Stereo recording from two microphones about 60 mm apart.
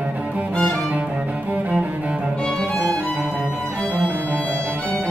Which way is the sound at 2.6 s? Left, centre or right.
Centre.